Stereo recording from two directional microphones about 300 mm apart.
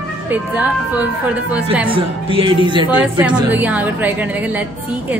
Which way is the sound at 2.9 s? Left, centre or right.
Centre.